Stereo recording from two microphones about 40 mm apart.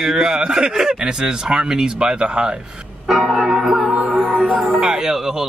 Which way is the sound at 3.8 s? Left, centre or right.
Right.